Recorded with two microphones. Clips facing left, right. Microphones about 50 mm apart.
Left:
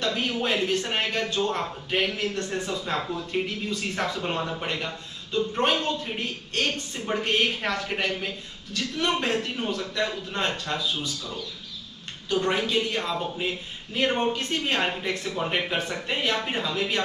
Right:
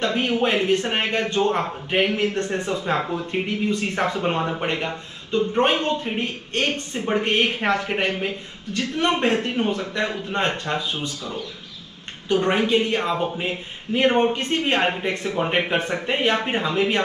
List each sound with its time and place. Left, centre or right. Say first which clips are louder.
0.0 s speech: right 5 dB; right